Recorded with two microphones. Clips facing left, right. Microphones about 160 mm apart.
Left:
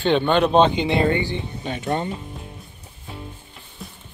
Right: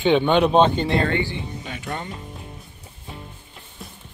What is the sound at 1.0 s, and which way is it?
Speech, 20° left (ahead or behind).